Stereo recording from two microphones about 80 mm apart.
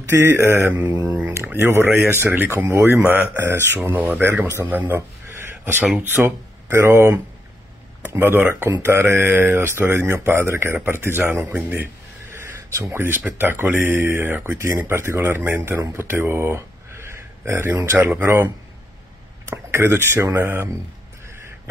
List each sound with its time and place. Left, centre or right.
0.1 s speech: right
0.8 s speech: right
1.3 s speech: right
8.2 s speech: right
12.3 s a sound: right
12.9 s speech: right
16.0 s a sound: right
17.7 s speech: right